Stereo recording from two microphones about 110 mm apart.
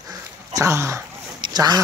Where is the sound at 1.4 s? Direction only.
35° right (ahead or behind).